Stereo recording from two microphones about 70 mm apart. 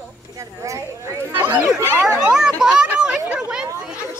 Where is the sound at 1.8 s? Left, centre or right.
Right.